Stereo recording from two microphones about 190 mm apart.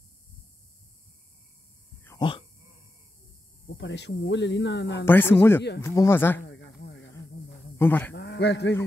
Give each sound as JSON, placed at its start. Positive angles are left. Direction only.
{"t": 2.1, "sound": "a sound", "side_deg": 25}
{"t": 3.6, "sound": "speech", "side_deg": 75}
{"t": 5.0, "sound": "speech", "side_deg": 10}
{"t": 7.7, "sound": "speech", "side_deg": 10}
{"t": 8.1, "sound": "a man's voice", "side_deg": 65}